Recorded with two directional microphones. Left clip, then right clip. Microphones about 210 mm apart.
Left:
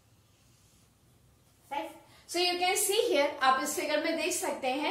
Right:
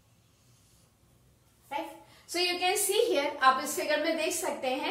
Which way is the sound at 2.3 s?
10° left (ahead or behind).